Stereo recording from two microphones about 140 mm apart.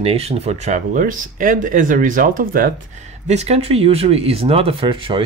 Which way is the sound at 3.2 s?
50° right (ahead or behind).